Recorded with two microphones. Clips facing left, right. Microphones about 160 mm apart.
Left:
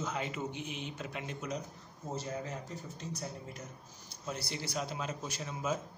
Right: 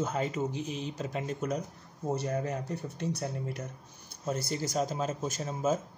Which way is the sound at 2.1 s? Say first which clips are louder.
Right 5 dB; 65° right (ahead or behind).